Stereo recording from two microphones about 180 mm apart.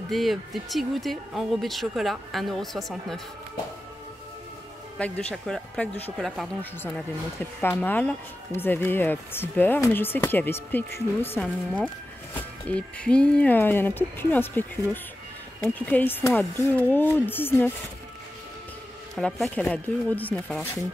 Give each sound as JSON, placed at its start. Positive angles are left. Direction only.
{"t": 0.1, "sound": "speech", "side_deg": 0}
{"t": 4.9, "sound": "speech", "side_deg": 5}
{"t": 19.1, "sound": "speech", "side_deg": 0}